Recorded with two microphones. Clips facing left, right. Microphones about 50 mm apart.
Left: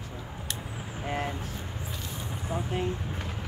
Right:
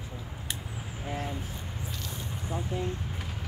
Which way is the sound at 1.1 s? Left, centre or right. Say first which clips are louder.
Left 3 dB; left.